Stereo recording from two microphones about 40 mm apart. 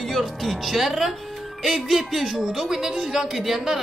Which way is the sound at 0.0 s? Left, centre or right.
Centre.